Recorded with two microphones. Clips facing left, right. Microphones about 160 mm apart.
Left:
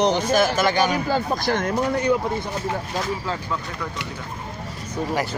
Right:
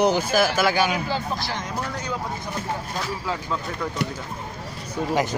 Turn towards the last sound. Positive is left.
turn(degrees=-20)  # may be behind; listen again after turning